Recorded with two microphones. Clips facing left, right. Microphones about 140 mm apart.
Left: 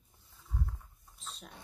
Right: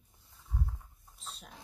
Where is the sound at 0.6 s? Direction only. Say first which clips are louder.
Right 1 dB; 5° right (ahead or behind).